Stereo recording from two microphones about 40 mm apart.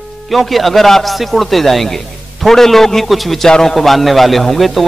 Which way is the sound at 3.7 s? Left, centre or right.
Centre.